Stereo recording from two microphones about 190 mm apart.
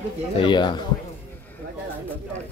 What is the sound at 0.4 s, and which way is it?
Speech, 25° left (ahead or behind).